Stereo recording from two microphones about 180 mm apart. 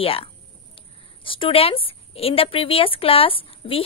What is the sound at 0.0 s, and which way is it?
A woman's voice, 30° left (ahead or behind).